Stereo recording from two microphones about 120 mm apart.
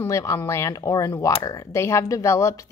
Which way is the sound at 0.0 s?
25° left (ahead or behind).